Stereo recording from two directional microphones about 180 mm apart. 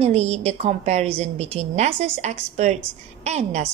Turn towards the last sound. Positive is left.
turn(degrees=-35)  # may be behind; listen again after turning